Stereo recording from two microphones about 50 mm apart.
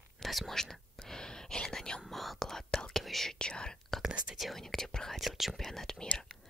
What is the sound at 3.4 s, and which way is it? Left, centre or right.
Whispering, centre.